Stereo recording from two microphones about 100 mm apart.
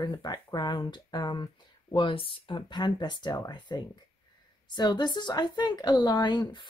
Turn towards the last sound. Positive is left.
turn(degrees=50)  # may be behind; listen again after turning